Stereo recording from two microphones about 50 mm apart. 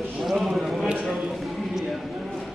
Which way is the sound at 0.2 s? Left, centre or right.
Centre.